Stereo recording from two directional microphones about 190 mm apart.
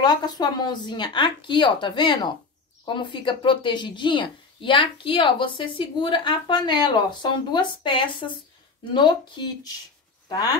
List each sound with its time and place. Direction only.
0.0 s speech: 20° left (ahead or behind)